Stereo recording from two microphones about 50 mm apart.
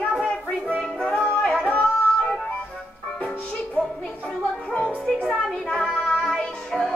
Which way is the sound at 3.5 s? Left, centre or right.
Left.